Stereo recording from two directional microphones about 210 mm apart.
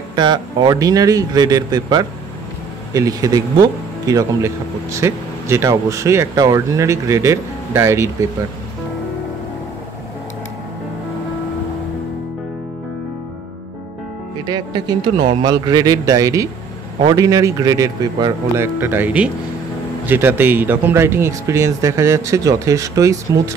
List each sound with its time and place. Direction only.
0.1 s a man's voice: 20° right (ahead or behind)
14.4 s a man's voice: 20° right (ahead or behind)